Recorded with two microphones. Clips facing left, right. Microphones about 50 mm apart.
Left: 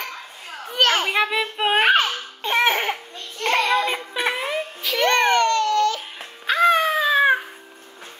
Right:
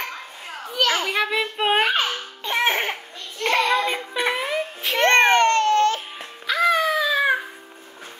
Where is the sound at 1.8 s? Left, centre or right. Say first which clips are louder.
Left 3 dB; left.